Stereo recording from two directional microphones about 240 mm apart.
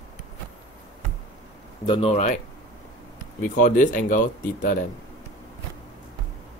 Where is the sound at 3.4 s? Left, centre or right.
Left.